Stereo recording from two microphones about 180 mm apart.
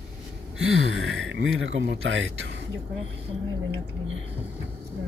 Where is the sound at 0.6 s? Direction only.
90° right.